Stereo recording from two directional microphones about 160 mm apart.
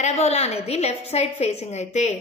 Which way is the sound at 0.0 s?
45° left (ahead or behind).